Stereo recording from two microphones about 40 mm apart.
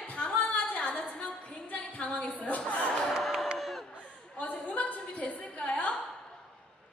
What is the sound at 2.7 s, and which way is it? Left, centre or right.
Music, left.